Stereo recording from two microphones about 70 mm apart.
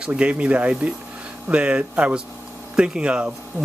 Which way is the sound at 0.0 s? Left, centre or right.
Centre.